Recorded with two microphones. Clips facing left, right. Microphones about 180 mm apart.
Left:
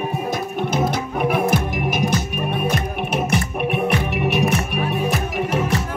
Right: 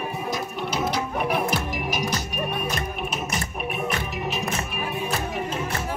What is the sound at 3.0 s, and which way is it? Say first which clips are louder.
Music: left 8 dB; 65° left (ahead or behind).